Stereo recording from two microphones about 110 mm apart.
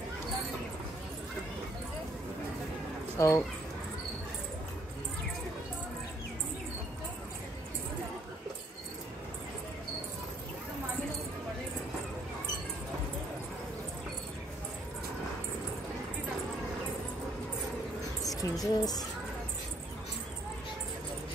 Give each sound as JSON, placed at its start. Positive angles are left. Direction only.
{"t": 3.2, "sound": "speech", "side_deg": 30}
{"t": 18.3, "sound": "speech", "side_deg": 35}